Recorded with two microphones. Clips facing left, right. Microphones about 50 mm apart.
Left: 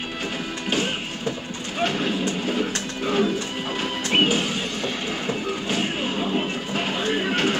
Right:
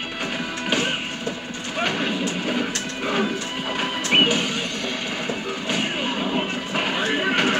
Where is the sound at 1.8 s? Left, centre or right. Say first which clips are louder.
Even; centre.